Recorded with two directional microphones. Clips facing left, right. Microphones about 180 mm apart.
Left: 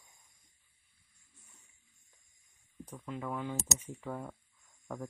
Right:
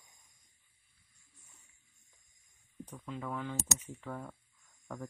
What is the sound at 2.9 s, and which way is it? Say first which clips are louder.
Speech: left 1 dB; 5° left (ahead or behind).